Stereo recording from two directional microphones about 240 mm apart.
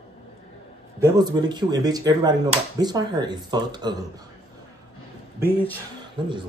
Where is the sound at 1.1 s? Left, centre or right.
Centre.